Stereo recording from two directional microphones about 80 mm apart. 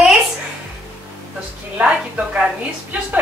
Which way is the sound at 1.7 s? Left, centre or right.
Centre.